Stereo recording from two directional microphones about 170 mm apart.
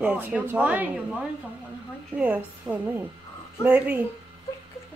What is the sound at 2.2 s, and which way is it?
Speech, 10° right (ahead or behind).